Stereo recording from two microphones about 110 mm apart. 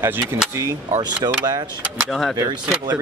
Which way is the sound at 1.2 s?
35° right (ahead or behind).